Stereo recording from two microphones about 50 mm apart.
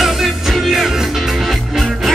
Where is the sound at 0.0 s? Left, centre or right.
Centre.